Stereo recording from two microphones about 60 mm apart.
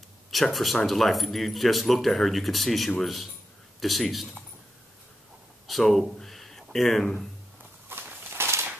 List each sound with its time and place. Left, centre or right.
0.3 s speech: centre
5.7 s speech: centre
7.9 s walk: right